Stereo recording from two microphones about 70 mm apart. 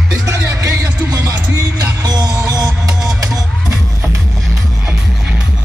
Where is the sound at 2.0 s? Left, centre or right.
Right.